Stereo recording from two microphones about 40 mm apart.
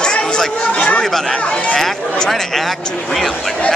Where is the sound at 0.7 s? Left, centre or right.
Left.